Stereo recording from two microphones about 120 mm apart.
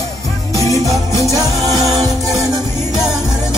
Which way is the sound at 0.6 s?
25° left (ahead or behind).